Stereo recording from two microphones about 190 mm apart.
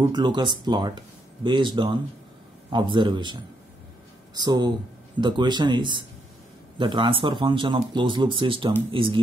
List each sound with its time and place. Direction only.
0.0 s speech: 25° right (ahead or behind)